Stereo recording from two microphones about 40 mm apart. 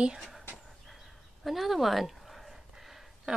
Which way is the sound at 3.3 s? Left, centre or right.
Centre.